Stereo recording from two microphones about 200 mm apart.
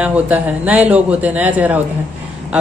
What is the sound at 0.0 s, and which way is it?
Speech, 5° right (ahead or behind).